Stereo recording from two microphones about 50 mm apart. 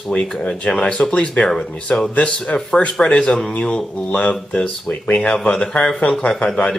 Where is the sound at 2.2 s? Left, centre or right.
Left.